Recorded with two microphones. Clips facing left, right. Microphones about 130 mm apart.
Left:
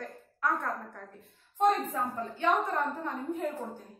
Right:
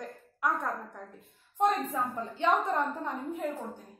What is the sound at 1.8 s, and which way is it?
A woman's voice, 15° right (ahead or behind).